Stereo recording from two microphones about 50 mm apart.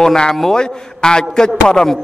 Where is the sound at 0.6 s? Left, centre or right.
Centre.